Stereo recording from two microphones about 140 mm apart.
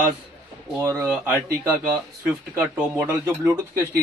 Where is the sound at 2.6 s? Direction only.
10° right (ahead or behind).